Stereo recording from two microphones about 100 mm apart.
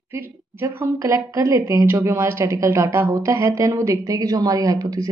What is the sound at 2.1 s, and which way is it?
A woman's voice, 20° right (ahead or behind).